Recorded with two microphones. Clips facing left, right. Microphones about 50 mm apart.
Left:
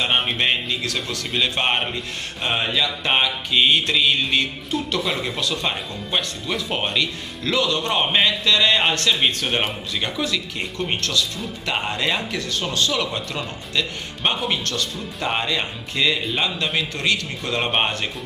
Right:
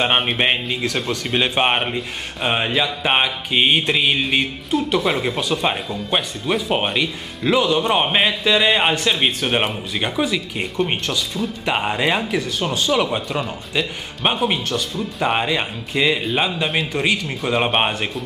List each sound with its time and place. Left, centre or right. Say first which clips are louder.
0.0 s a man's voice: right 3 dB; centre